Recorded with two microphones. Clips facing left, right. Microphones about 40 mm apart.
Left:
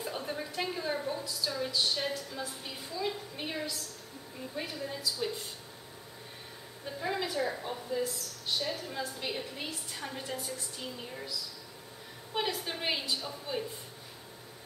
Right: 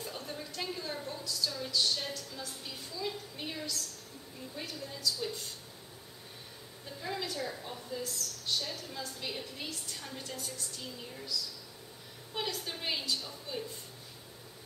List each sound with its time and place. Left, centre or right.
0.0 s a woman's voice: centre
6.9 s a woman's voice: centre